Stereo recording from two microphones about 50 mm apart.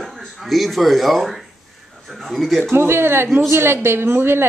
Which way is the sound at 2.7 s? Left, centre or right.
Right.